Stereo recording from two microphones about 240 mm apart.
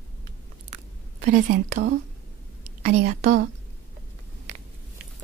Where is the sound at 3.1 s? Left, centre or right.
Right.